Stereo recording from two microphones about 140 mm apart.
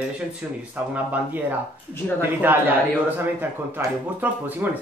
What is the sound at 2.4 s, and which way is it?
Speech, 15° right (ahead or behind).